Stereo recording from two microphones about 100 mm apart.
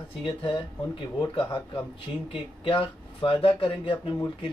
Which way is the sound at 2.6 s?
60° left (ahead or behind).